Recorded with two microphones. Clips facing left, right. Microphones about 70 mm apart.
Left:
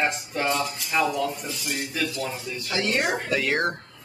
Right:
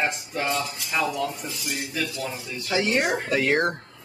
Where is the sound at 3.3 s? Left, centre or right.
Right.